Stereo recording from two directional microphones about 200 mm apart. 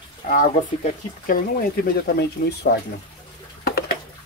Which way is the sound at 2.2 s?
55° left (ahead or behind).